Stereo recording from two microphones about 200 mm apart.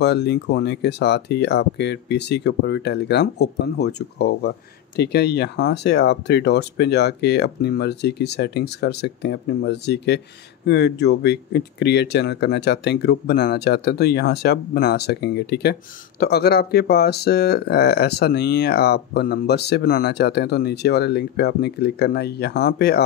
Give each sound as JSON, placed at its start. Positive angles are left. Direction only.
{"t": 0.0, "sound": "speech", "side_deg": 55}